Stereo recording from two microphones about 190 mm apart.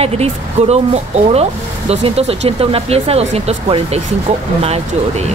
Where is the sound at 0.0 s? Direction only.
35° right (ahead or behind).